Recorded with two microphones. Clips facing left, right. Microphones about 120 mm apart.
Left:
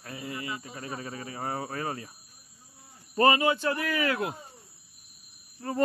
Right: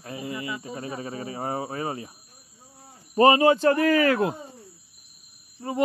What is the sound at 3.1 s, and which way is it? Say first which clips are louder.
Speech: right 6 dB; 25° right (ahead or behind).